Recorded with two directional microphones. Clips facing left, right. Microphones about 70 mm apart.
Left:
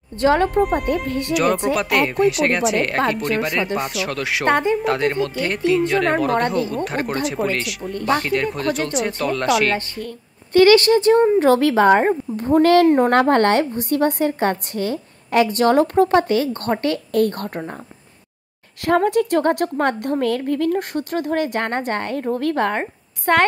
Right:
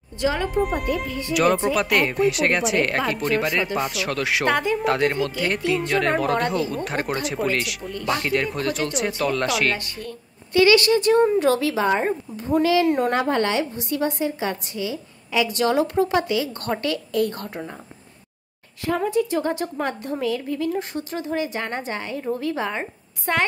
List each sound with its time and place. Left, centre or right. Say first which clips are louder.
0.2 s speech: left 7 dB; left
0.6 s speech: left 4 dB; centre
1.0 s a woman's voice: left 5 dB; left
1.3 s speech: even; centre
4.5 s speech: left 5 dB; left
4.7 s speech: left 2 dB; centre
7.9 s a woman's voice: left 6 dB; left
8.2 s speech: left 2 dB; centre
10.5 s speech: left 4 dB; left
13.1 s a woman's voice: left 6 dB; left
17.1 s a woman's voice: left 5 dB; left
18.9 s a woman's voice: left 5 dB; left